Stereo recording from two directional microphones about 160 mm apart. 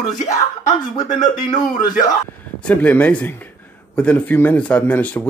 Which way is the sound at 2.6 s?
10° left (ahead or behind).